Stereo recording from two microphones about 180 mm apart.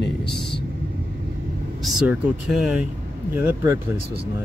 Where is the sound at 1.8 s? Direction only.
Centre (ahead or behind).